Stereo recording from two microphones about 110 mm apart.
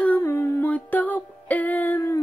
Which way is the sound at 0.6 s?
15° left (ahead or behind).